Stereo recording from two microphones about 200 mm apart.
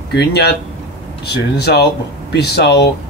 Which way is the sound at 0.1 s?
55° left (ahead or behind).